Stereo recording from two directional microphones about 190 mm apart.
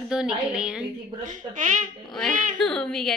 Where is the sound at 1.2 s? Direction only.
40° right (ahead or behind).